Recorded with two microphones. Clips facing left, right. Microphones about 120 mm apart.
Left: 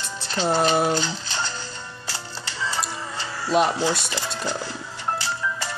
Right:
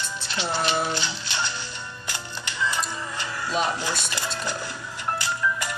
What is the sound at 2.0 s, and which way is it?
Music, 35° left (ahead or behind).